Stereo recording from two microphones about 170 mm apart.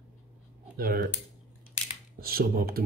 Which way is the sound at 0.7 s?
60° right (ahead or behind).